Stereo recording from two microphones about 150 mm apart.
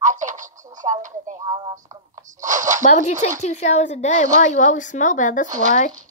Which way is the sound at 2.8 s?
50° left (ahead or behind).